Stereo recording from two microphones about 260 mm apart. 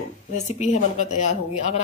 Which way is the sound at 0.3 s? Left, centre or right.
Left.